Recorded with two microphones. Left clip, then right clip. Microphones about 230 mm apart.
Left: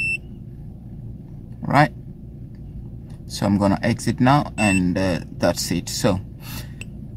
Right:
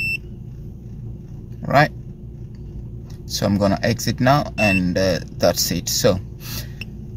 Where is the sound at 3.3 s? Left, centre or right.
Centre.